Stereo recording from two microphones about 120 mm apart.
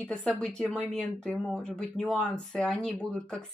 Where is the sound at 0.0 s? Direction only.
10° left (ahead or behind).